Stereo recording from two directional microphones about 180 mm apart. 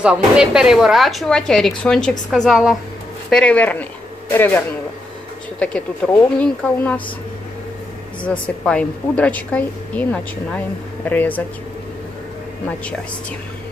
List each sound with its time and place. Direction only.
0.0 s a woman's voice: 5° right (ahead or behind)
8.3 s speech: 10° left (ahead or behind)